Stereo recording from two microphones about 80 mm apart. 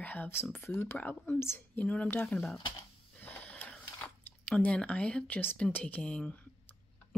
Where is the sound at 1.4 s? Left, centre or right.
Left.